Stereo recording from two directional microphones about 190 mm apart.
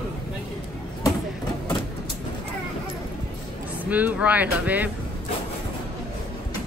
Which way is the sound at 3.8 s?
10° right (ahead or behind).